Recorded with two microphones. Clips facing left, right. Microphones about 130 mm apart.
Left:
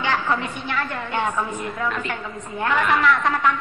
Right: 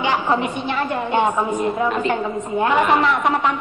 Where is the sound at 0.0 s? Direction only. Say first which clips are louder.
Right 4 dB; 20° right (ahead or behind).